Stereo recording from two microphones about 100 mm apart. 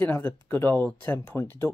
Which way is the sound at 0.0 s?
20° left (ahead or behind).